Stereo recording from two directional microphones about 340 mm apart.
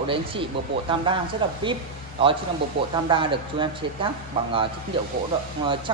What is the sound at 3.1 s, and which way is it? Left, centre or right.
Speech, centre.